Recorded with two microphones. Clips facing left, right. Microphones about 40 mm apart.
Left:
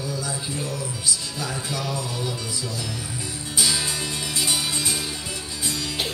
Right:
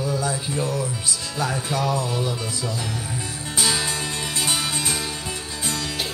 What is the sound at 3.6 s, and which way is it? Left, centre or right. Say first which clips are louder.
Music: right 2 dB; centre.